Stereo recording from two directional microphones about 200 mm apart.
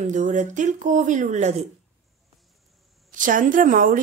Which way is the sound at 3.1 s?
40° right (ahead or behind).